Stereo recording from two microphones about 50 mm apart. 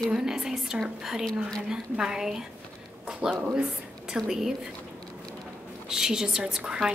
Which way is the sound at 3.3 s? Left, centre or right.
Right.